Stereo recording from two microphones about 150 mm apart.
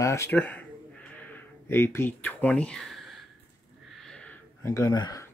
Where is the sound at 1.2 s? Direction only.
15° left (ahead or behind).